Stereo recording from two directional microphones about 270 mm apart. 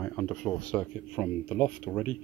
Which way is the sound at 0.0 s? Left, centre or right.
Centre.